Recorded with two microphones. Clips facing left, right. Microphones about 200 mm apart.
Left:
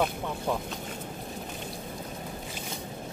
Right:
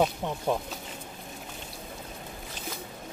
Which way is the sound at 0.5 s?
20° right (ahead or behind).